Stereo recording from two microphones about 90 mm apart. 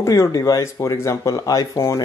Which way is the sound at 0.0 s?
35° left (ahead or behind).